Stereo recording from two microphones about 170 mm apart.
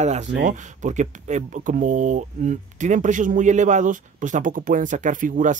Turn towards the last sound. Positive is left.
turn(degrees=-50)  # may be behind; listen again after turning